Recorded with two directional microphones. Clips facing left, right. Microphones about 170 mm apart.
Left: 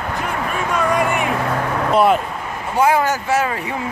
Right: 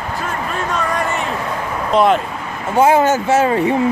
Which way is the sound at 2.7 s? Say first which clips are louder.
Right 4 dB; 25° right (ahead or behind).